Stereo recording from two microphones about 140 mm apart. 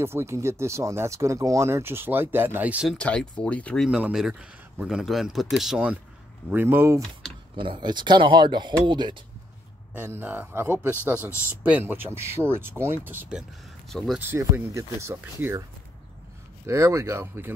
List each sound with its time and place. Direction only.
0.0 s speech: 20° right (ahead or behind)
2.9 s speech: 5° left (ahead or behind)
3.9 s speech: 5° right (ahead or behind)
7.5 s speech: 35° right (ahead or behind)
9.9 s speech: 15° right (ahead or behind); by 14.2 s centre (ahead or behind)
14.3 s speech: 20° right (ahead or behind)
16.6 s speech: 20° right (ahead or behind)